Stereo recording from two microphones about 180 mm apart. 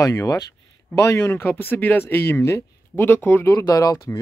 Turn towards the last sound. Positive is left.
turn(degrees=20)  # may be behind; listen again after turning